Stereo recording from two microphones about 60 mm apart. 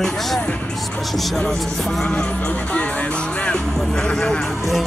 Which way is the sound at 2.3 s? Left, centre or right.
Left.